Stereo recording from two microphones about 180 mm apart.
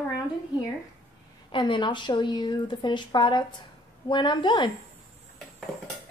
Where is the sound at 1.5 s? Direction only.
25° left (ahead or behind).